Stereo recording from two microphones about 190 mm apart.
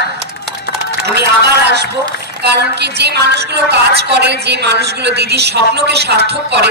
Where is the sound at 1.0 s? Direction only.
60° right (ahead or behind).